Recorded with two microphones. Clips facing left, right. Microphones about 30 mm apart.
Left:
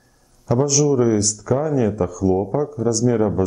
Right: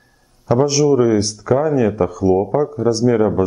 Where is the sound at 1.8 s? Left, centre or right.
Right.